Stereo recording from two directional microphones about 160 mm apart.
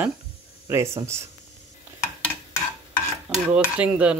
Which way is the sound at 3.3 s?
5° right (ahead or behind).